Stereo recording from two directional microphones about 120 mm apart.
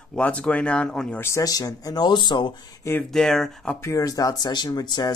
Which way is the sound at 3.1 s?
5° left (ahead or behind).